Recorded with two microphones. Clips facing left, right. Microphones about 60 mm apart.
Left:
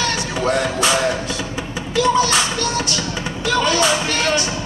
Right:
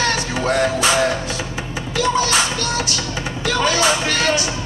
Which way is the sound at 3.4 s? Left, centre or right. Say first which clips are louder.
Even; right.